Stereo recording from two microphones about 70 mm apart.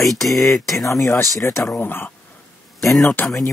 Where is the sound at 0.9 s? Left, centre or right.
Left.